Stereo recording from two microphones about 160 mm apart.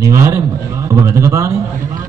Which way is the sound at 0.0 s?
20° right (ahead or behind).